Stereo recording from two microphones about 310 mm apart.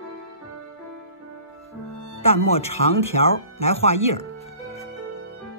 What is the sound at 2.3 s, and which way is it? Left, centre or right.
Speech, centre.